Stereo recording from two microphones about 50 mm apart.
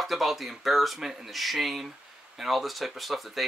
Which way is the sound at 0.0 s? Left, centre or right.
Centre.